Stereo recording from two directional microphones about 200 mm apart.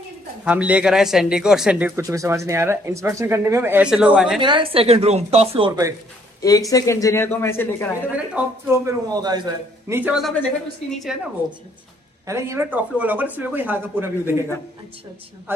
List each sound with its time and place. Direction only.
0.5 s speech: 5° right (ahead or behind)
4.4 s speech: 25° right (ahead or behind)
6.7 s speech: 15° left (ahead or behind)
8.3 s a woman's voice: 10° right (ahead or behind)
12.3 s speech: 15° right (ahead or behind)